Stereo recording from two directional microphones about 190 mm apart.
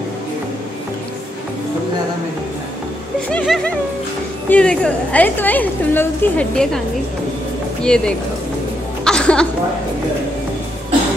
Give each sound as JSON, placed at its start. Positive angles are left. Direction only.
{"t": 3.3, "sound": "music", "side_deg": 5}
{"t": 4.5, "sound": "a woman's voice", "side_deg": 5}
{"t": 7.8, "sound": "music", "side_deg": 5}
{"t": 9.0, "sound": "a sound", "side_deg": 5}